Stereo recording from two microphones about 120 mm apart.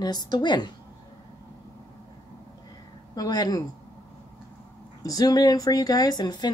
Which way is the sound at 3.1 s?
35° left (ahead or behind).